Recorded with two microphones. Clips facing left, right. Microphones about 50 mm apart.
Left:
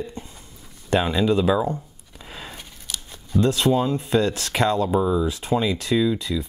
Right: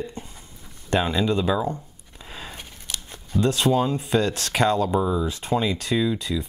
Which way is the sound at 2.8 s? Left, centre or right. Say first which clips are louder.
Even; right.